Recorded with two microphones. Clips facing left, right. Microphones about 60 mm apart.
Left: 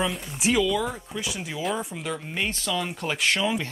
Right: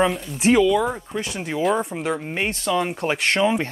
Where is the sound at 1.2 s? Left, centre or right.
Right.